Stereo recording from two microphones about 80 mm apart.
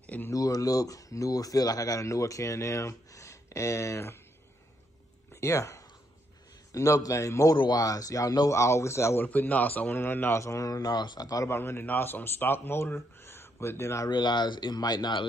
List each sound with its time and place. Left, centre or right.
0.0 s a sound: centre
0.3 s speech: left
5.3 s speech: left
9.2 s a man's voice: left
11.5 s a man's voice: left
14.1 s speech: left